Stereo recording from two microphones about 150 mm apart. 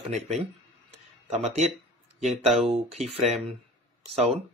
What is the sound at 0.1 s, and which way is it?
Speech, 50° right (ahead or behind).